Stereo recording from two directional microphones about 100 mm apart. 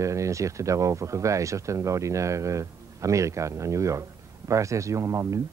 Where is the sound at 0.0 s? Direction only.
30° right (ahead or behind).